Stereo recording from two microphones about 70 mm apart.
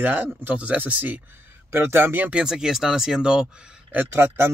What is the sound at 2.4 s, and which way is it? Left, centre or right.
Speech, centre.